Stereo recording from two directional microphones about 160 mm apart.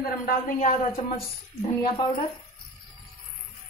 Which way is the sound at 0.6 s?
45° left (ahead or behind).